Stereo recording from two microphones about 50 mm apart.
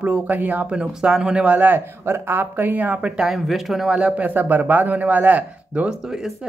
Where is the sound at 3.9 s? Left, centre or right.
Right.